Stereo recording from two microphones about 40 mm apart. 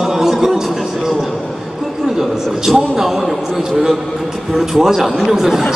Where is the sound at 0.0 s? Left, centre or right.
Centre.